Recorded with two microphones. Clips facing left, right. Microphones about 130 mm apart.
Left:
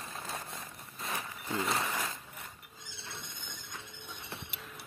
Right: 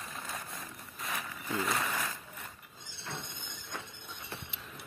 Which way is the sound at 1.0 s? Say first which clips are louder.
Even; 25° left (ahead or behind).